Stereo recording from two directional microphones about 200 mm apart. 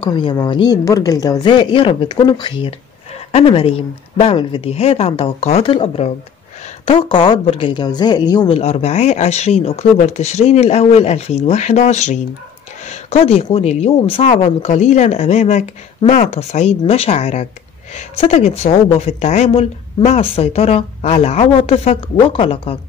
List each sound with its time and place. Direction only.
0.0 s speech: 20° left (ahead or behind)